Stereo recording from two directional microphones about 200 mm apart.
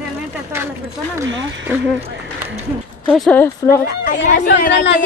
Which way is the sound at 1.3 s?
70° right (ahead or behind).